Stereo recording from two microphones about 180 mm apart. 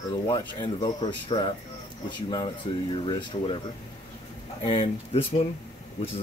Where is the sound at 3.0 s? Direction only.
30° left (ahead or behind).